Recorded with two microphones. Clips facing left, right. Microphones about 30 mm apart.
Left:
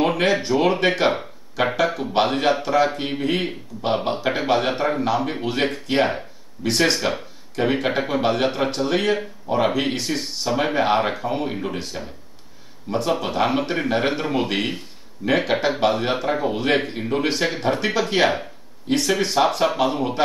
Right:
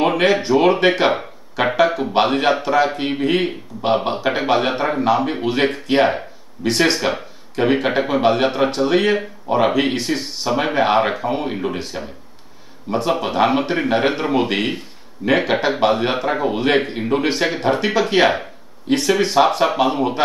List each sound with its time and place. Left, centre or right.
0.2 s a man's voice: centre